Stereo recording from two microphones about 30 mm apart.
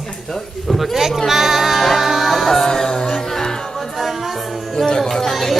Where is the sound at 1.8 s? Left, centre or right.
Centre.